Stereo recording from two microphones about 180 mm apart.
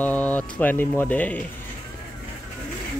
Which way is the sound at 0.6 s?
10° left (ahead or behind).